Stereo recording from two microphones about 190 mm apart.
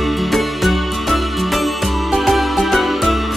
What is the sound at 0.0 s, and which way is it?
Music, centre (ahead or behind).